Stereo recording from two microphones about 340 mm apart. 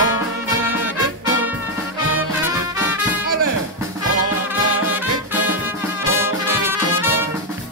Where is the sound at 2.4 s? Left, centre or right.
Centre.